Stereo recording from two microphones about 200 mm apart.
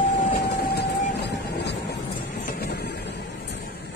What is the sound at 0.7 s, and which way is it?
Vehicle, 60° left (ahead or behind).